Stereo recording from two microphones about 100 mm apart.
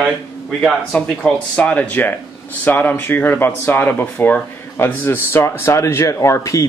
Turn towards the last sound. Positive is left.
turn(degrees=30)  # may be behind; listen again after turning